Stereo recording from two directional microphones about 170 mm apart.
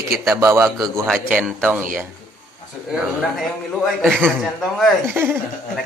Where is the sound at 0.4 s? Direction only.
15° right (ahead or behind).